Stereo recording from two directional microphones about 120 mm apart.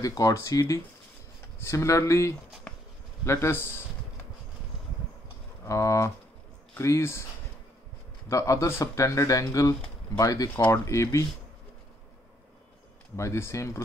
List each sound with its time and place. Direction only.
0.0 s speech: 30° left (ahead or behind)
2.7 s bee: 10° left (ahead or behind)
3.3 s speech: 20° left (ahead or behind)
5.7 s speech: 25° left (ahead or behind)
8.3 s speech: 25° left (ahead or behind)
13.1 s speech: 25° left (ahead or behind)